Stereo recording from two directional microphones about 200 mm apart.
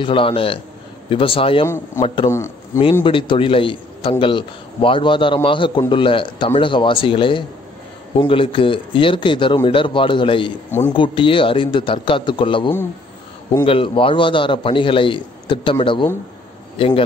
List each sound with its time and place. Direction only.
0.0 s a man's voice: 25° left (ahead or behind)
2.3 s speech: 15° left (ahead or behind)
2.8 s a man's voice: 25° left (ahead or behind)